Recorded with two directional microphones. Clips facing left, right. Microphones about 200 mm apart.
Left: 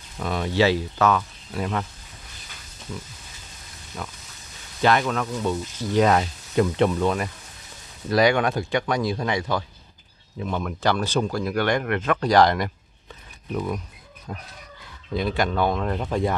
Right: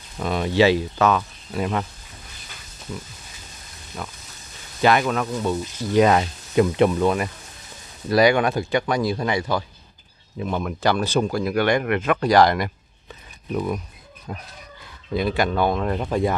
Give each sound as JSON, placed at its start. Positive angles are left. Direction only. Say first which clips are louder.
{"t": 0.2, "sound": "speech", "louder": "right 3 dB", "side_deg": -20}
{"t": 4.0, "sound": "speech", "louder": "right 1 dB", "side_deg": -5}
{"t": 15.1, "sound": "speech", "louder": "right 2 dB", "side_deg": -5}